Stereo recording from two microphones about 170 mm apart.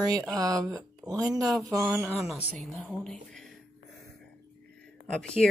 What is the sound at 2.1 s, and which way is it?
Speech, centre (ahead or behind).